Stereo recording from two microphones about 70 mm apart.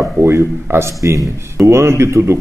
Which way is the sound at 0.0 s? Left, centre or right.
Right.